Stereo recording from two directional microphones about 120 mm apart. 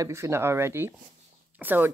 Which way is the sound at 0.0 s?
25° right (ahead or behind).